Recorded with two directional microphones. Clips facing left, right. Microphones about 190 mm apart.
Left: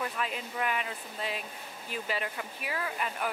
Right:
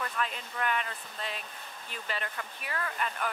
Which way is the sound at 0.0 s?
5° left (ahead or behind).